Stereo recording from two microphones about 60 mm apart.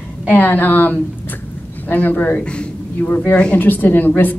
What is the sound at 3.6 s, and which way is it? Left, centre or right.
Speech, left.